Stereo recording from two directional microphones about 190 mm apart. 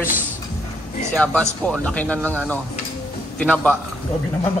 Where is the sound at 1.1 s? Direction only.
5° left (ahead or behind).